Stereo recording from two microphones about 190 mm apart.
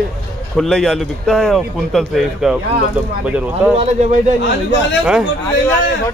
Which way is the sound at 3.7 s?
35° right (ahead or behind).